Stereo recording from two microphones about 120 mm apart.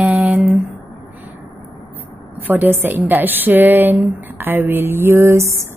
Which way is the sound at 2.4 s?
15° right (ahead or behind).